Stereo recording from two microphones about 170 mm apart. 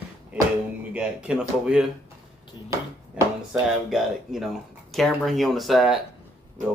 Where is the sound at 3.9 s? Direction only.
Centre (ahead or behind).